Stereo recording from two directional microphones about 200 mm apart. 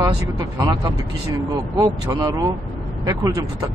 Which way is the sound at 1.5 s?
20° right (ahead or behind).